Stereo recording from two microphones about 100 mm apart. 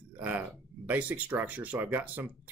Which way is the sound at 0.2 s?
15° right (ahead or behind).